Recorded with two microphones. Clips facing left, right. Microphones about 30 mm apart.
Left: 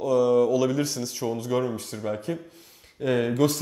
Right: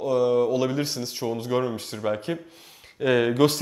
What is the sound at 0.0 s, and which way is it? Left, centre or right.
A man's voice, right.